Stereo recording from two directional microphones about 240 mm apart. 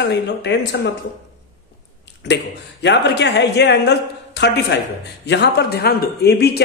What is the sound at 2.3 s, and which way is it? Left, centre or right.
A woman's voice, left.